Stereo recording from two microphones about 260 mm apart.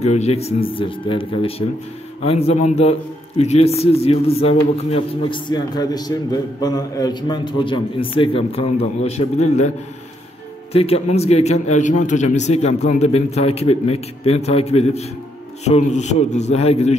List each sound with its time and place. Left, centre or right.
0.0 s a man's voice: left
10.7 s a man's voice: left